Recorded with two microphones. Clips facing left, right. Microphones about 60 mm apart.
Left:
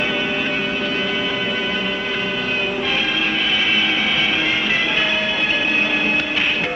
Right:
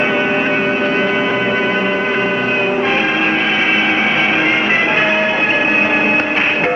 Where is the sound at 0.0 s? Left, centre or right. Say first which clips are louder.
Right 6 dB; right.